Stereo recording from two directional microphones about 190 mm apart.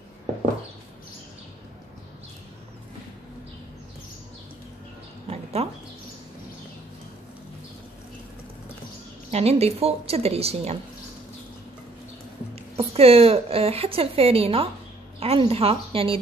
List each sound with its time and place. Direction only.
5.3 s a sound: 35° right (ahead or behind)
9.3 s a woman's voice: 35° right (ahead or behind)
12.7 s a woman's voice: 30° right (ahead or behind)